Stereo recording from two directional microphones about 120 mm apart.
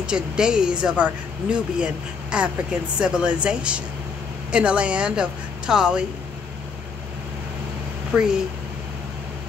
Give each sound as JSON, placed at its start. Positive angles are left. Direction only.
{"t": 0.0, "sound": "speech", "side_deg": -5}
{"t": 8.1, "sound": "speech", "side_deg": -10}